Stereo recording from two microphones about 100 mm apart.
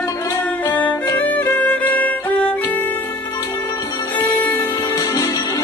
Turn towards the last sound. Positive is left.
turn(degrees=40)  # may be behind; listen again after turning